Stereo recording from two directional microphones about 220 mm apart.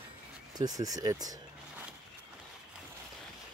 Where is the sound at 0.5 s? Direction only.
15° right (ahead or behind).